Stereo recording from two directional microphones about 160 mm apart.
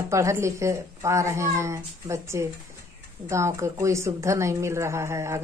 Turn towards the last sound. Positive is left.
turn(degrees=-15)  # may be behind; listen again after turning